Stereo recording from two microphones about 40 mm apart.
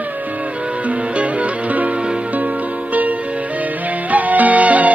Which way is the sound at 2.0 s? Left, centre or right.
Right.